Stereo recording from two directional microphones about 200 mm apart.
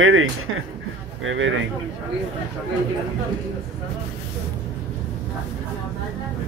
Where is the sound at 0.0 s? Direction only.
90° right.